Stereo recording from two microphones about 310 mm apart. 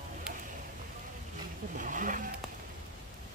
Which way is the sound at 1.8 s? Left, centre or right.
Right.